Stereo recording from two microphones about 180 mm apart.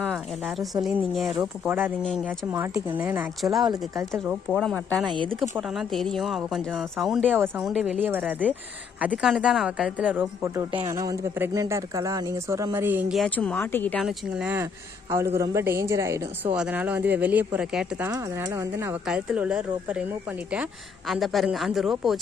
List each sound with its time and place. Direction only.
0.0 s speech: centre (ahead or behind); by 4.0 s 20° right (ahead or behind)
4.5 s speech: 5° left (ahead or behind)
7.3 s speech: 10° right (ahead or behind)
13.1 s speech: 5° left (ahead or behind)
14.0 s speech: 5° right (ahead or behind)
18.1 s speech: 20° right (ahead or behind)
21.1 s speech: centre (ahead or behind)